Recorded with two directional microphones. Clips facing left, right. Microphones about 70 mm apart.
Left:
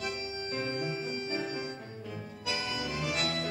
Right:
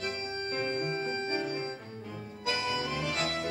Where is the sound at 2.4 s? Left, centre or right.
Right.